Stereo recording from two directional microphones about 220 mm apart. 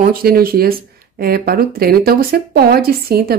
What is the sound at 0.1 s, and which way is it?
A woman's voice, 40° right (ahead or behind).